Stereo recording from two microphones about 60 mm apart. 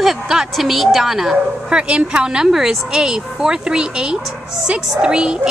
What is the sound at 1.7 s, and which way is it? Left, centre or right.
A woman's voice, centre.